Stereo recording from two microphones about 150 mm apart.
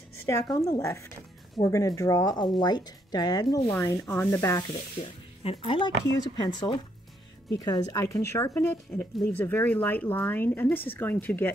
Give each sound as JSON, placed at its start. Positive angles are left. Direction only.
{"t": 0.2, "sound": "speech", "side_deg": 20}
{"t": 5.0, "sound": "speech", "side_deg": 40}